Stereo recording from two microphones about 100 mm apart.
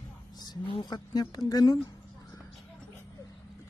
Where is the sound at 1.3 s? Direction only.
40° left (ahead or behind).